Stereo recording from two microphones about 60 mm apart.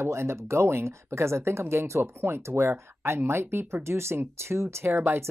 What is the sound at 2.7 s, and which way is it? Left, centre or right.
Speech, right.